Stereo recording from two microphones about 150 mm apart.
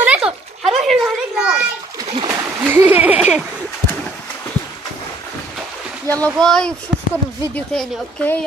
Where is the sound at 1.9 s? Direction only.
25° right (ahead or behind).